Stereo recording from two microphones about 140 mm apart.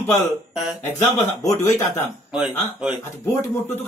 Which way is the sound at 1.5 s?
20° left (ahead or behind).